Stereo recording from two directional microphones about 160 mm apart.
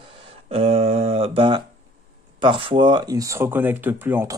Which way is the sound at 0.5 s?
40° right (ahead or behind).